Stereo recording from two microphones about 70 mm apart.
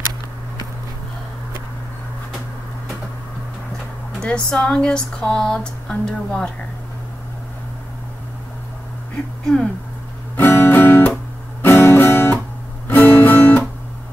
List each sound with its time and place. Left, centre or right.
4.2 s speech: centre
10.3 s guitar: left